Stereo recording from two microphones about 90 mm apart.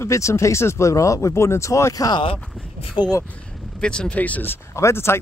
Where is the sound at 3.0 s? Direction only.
65° left (ahead or behind).